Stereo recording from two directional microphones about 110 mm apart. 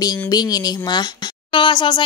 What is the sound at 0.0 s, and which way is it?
Speech, 35° left (ahead or behind).